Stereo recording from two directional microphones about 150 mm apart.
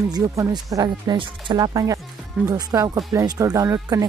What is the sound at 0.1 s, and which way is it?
Speech, 25° right (ahead or behind).